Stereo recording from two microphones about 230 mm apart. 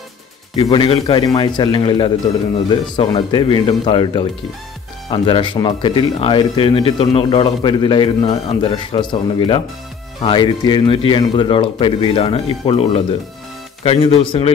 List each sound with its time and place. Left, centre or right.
0.6 s speech: left